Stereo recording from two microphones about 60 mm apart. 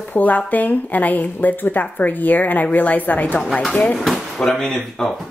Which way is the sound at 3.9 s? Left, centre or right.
Centre.